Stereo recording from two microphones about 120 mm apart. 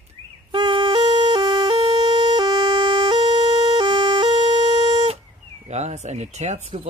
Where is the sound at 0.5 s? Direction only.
40° right (ahead or behind).